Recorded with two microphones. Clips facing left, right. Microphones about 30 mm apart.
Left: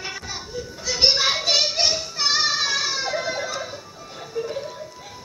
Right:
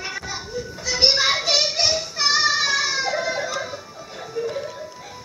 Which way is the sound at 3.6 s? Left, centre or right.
Centre.